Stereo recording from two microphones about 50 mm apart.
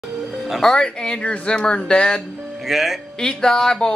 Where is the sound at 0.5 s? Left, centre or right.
Centre.